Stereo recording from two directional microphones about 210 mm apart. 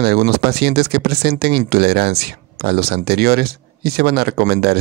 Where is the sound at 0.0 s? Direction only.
50° right (ahead or behind).